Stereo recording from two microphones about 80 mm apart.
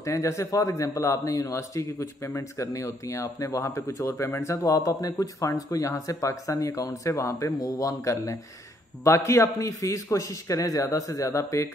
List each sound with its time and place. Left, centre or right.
0.0 s a man's voice: left